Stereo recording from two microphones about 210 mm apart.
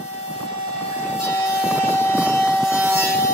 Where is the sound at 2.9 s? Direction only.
10° left (ahead or behind).